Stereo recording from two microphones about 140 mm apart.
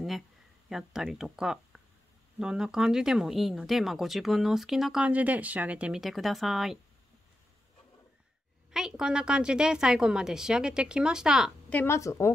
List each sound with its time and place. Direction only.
0.7 s speech: 5° right (ahead or behind)
8.7 s speech: 5° right (ahead or behind)
11.7 s speech: 15° left (ahead or behind)